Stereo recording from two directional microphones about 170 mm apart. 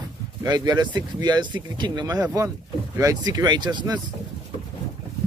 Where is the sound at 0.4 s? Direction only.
25° right (ahead or behind).